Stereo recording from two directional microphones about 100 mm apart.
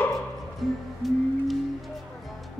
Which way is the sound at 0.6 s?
Centre (ahead or behind).